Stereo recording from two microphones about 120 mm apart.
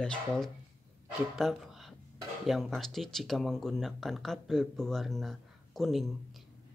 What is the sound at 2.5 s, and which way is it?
Speech, centre (ahead or behind).